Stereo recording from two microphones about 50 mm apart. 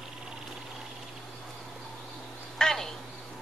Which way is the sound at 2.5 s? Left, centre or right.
Centre.